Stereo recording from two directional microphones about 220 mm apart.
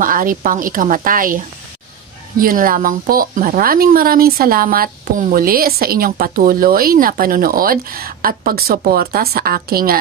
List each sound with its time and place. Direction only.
0.0 s speech: 40° right (ahead or behind)